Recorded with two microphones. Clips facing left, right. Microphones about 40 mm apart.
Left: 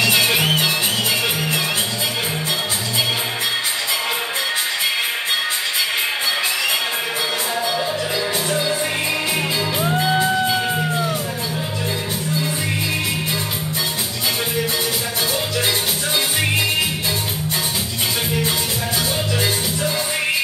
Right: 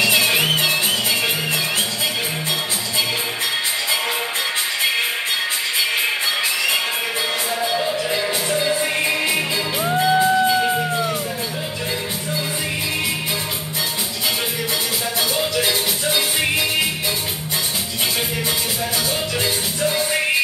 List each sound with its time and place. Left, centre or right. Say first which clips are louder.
0.1 s music: even; centre
10.0 s music: right 4 dB; centre
10.4 s music: right 2 dB; centre